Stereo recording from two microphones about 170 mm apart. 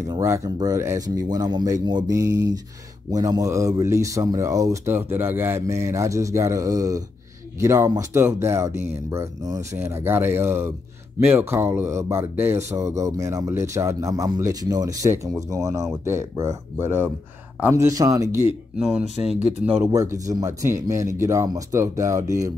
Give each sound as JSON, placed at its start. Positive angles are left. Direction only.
{"t": 0.0, "sound": "speech", "side_deg": -20}
{"t": 19.8, "sound": "speech", "side_deg": -15}